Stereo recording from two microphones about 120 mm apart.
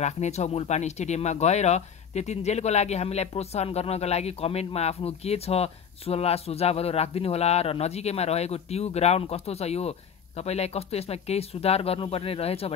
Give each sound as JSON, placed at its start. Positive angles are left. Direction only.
{"t": 0.0, "sound": "speech", "side_deg": 70}